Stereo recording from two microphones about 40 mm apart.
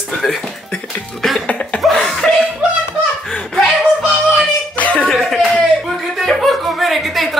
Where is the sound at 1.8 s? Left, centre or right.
Centre.